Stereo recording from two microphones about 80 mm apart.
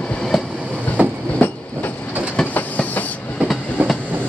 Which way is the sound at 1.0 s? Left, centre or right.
Centre.